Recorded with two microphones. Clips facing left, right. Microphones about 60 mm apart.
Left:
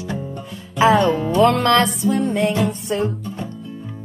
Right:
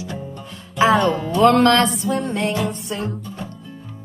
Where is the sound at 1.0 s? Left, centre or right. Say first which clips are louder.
Left 1 dB; centre.